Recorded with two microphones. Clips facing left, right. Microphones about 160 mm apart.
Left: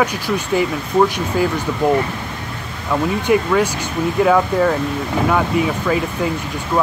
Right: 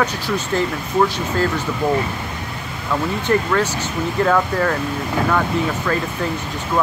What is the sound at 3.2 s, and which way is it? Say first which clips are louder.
Speech: left 2 dB; 10° left (ahead or behind).